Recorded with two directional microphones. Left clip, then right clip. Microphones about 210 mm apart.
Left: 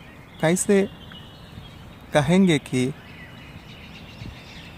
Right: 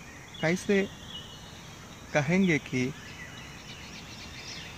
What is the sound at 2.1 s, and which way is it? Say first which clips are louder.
Speech: left 7 dB; 15° left (ahead or behind).